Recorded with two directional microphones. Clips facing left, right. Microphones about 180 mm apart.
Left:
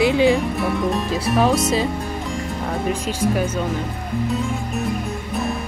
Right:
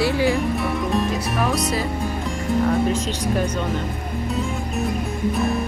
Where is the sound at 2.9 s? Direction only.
5° left (ahead or behind).